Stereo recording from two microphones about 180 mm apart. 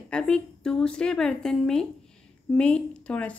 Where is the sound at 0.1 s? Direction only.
5° left (ahead or behind).